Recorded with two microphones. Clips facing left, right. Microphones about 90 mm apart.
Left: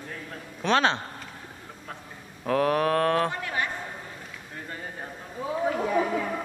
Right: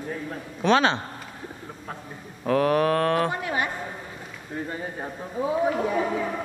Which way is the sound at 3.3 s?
20° right (ahead or behind).